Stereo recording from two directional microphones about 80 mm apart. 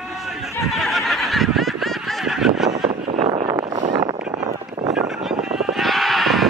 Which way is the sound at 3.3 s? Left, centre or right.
Right.